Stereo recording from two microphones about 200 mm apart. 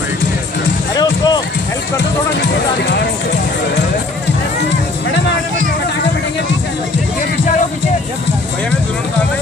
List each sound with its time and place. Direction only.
0.9 s music: 20° left (ahead or behind)
2.8 s music: 55° left (ahead or behind)